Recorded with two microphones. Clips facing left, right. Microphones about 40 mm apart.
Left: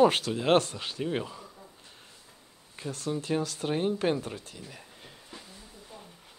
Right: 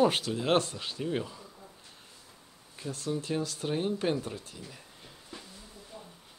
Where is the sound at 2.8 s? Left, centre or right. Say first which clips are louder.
Left 1 dB; left.